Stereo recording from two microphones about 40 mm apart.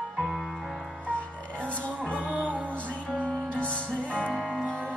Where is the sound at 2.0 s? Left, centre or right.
Right.